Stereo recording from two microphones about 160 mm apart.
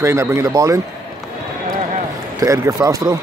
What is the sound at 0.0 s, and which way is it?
Speech, 15° right (ahead or behind).